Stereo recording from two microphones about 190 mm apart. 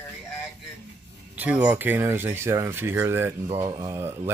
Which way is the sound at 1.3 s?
10° right (ahead or behind).